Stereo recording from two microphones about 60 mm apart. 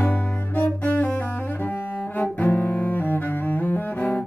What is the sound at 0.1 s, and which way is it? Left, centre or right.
Music, left.